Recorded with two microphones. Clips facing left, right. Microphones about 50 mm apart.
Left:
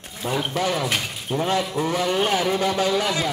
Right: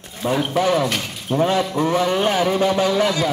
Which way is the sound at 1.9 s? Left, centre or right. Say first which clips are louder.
Right 2 dB; right.